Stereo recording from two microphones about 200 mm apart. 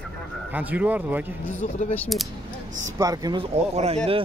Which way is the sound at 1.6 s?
35° left (ahead or behind).